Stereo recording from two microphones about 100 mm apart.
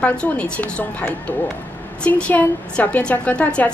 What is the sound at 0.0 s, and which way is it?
A woman's voice, 15° left (ahead or behind).